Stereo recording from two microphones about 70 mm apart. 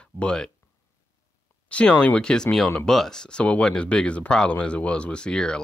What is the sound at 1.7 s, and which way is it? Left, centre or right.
Speech, centre.